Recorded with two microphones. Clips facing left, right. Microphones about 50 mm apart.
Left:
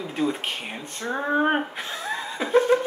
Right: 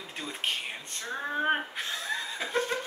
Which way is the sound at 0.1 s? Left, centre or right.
Centre.